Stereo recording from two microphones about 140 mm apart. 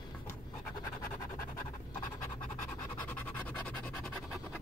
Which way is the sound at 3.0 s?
10° left (ahead or behind).